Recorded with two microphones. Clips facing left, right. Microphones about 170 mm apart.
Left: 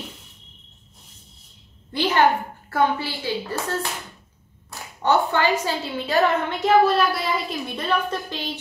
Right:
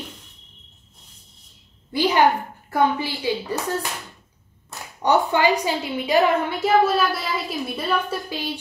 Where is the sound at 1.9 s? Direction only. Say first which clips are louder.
Right 2 dB; 10° right (ahead or behind).